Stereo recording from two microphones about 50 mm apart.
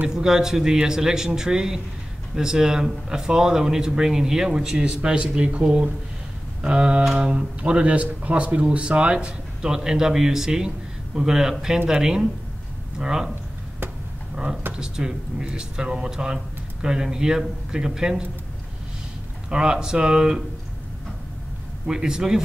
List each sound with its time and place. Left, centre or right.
0.1 s speech: centre
14.3 s speech: centre
19.5 s speech: centre
21.8 s speech: centre